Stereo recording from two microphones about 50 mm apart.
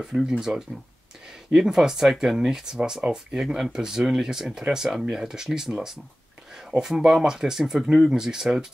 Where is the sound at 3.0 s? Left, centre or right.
Right.